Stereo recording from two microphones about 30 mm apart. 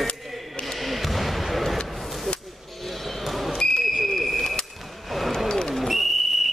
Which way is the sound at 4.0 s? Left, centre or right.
Centre.